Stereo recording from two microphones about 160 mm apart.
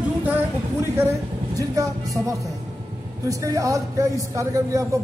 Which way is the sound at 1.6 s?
20° right (ahead or behind).